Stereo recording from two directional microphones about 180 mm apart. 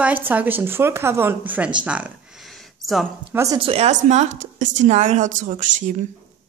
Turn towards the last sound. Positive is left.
turn(degrees=-45)  # may be behind; listen again after turning